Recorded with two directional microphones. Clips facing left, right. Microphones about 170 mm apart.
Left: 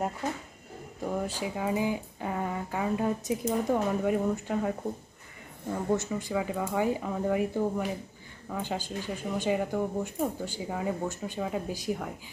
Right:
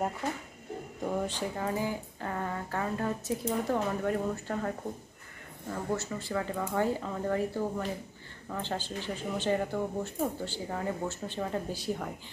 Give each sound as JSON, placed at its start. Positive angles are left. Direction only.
{"t": 1.0, "sound": "speech", "side_deg": 5}